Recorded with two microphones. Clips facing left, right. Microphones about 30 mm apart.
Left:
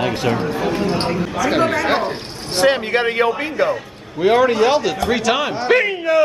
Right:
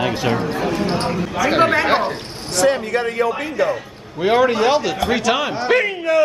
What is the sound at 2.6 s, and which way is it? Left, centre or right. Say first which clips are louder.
Speech: left 1 dB; left.